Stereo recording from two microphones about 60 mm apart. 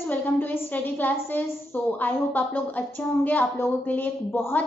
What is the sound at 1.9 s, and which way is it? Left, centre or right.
Child singing, left.